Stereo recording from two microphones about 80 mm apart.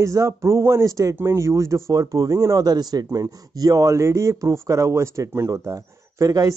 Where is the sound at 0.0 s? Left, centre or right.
Right.